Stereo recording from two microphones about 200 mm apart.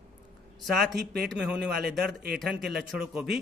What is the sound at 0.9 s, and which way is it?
Speech, 50° right (ahead or behind).